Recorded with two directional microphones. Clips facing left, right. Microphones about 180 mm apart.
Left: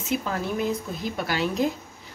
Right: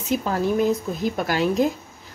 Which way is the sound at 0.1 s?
40° right (ahead or behind).